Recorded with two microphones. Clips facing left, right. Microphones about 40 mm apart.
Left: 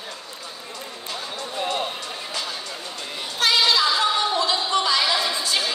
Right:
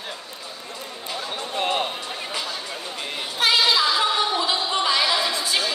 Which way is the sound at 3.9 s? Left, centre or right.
Centre.